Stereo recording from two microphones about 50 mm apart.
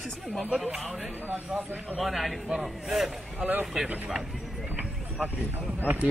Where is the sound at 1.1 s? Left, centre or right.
Right.